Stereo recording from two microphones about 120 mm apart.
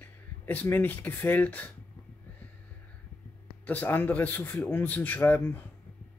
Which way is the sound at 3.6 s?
15° left (ahead or behind).